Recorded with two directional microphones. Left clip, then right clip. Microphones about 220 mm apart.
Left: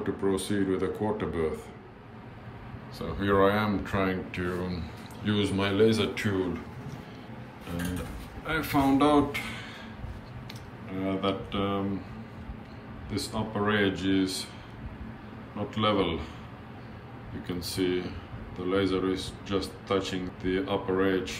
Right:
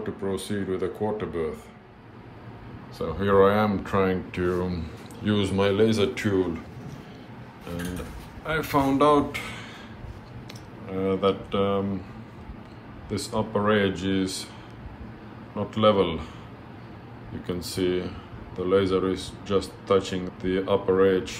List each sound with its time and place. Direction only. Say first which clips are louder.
0.0 s speech: left 1 dB; 25° right (ahead or behind)
3.0 s speech: right 5 dB; centre (ahead or behind)
8.5 s speech: right 2 dB; 5° left (ahead or behind)
10.9 s speech: right 6 dB; centre (ahead or behind)
13.1 s speech: right 6 dB; centre (ahead or behind)
15.7 s speech: right 6 dB; centre (ahead or behind)
17.4 s speech: right 3 dB; centre (ahead or behind)